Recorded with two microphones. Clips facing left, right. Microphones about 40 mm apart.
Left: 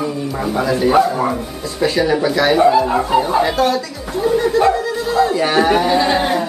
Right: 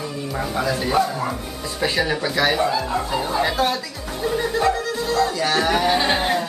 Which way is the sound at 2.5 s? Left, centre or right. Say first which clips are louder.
Left 9 dB; centre.